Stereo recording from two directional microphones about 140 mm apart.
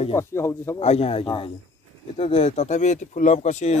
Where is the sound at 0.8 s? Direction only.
50° left (ahead or behind).